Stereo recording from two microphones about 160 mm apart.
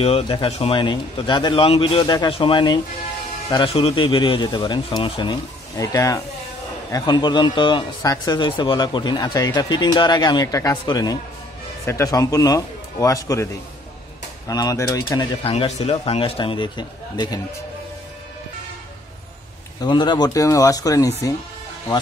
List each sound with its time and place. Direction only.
0.0 s a man's voice: 35° left (ahead or behind); by 13.5 s 20° left (ahead or behind)
14.5 s speech: 25° left (ahead or behind)
15.1 s a man's voice: 35° left (ahead or behind)
19.8 s speech: 30° left (ahead or behind)